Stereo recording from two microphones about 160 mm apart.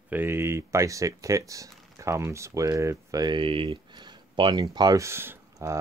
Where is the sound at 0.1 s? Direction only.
15° right (ahead or behind).